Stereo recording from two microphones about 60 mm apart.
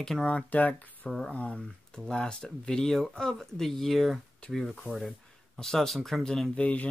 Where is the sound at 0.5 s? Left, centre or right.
Left; by 6.6 s centre.